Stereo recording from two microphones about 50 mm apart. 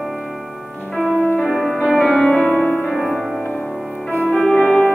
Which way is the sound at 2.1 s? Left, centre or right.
Left.